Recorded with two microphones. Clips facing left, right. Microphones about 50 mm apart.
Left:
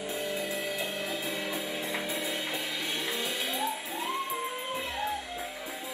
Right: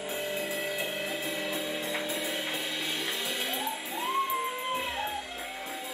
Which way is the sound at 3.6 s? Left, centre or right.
Right.